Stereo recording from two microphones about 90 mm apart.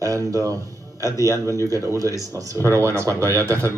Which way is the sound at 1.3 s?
35° left (ahead or behind).